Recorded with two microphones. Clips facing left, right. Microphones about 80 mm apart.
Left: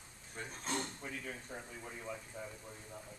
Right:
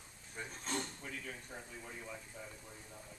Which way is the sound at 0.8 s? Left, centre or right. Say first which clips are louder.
Left 1 dB; centre.